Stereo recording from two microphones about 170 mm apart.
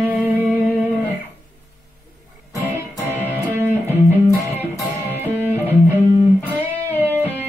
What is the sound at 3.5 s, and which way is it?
Music, 15° right (ahead or behind).